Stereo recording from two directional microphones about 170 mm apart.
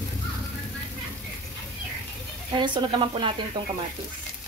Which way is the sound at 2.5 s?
30° right (ahead or behind).